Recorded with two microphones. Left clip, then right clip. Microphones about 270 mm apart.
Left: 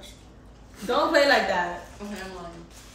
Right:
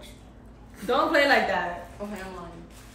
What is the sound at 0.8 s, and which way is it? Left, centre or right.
Speech, centre.